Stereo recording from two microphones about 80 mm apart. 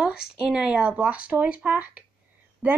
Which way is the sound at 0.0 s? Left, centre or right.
Centre.